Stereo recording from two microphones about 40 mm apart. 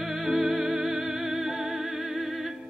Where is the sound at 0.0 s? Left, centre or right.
Centre.